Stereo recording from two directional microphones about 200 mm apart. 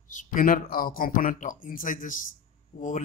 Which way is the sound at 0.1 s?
40° left (ahead or behind).